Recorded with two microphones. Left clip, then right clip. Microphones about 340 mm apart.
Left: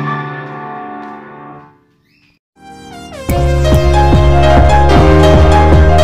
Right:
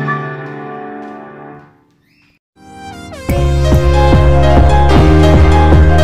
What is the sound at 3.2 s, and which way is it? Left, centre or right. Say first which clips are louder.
Music: left 2 dB; centre.